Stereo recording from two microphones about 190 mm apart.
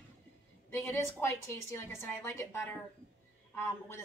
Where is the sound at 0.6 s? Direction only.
10° left (ahead or behind).